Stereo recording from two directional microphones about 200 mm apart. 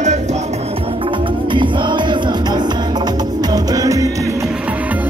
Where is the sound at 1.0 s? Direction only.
25° right (ahead or behind).